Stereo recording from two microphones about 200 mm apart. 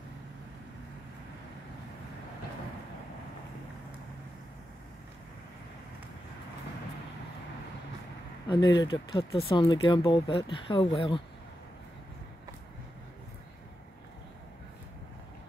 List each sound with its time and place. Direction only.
8.5 s speech: 20° left (ahead or behind)